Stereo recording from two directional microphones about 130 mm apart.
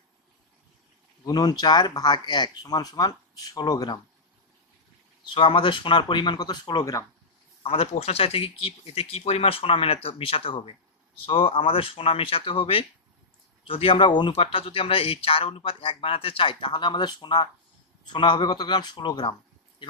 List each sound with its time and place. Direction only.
1.2 s speech: 30° left (ahead or behind)
5.3 s speech: 40° left (ahead or behind)
7.6 s speech: 50° left (ahead or behind)